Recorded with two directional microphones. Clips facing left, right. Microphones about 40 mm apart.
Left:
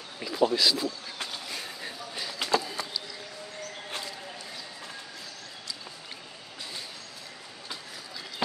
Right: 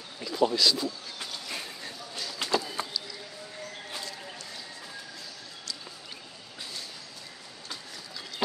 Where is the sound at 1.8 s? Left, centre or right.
Centre.